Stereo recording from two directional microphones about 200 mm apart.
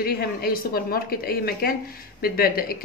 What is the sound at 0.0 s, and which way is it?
Speech, 50° left (ahead or behind).